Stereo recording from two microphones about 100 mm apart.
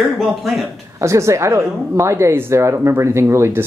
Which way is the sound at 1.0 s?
30° right (ahead or behind).